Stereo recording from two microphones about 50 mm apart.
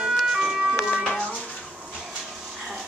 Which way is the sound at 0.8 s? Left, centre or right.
Right.